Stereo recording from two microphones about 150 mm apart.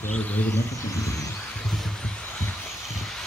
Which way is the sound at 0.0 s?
10° left (ahead or behind).